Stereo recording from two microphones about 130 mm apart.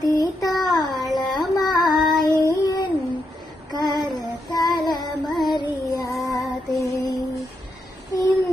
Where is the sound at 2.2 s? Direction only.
30° left (ahead or behind).